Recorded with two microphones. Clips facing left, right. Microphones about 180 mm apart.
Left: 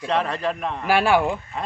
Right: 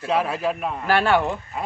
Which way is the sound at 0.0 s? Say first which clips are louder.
Right 1 dB; 5° right (ahead or behind).